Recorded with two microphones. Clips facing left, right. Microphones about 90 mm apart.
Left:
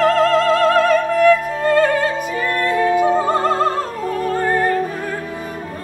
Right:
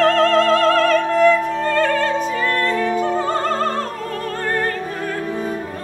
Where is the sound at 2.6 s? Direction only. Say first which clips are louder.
Left 8 dB; 10° left (ahead or behind).